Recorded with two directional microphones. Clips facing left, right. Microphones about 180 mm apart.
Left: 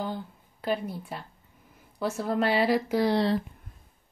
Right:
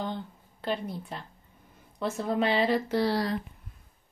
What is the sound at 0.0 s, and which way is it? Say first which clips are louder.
A woman's voice: left 1 dB; 5° left (ahead or behind).